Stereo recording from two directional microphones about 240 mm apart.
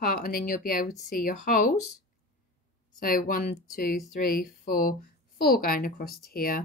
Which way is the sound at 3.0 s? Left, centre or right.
Left.